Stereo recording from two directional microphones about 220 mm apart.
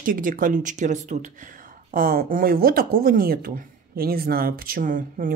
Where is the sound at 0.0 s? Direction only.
40° right (ahead or behind).